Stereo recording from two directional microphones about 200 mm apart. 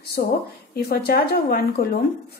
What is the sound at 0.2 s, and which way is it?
A woman's voice, 50° left (ahead or behind).